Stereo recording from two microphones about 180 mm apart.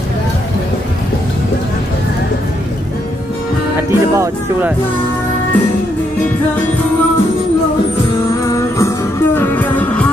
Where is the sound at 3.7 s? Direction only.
15° right (ahead or behind).